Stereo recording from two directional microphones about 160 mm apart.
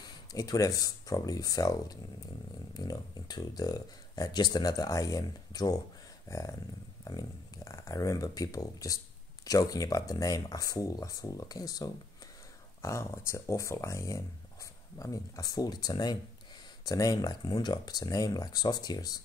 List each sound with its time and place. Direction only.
0.3 s speech: 20° left (ahead or behind)
6.2 s a sound: 20° left (ahead or behind)
7.1 s speech: 20° left (ahead or behind)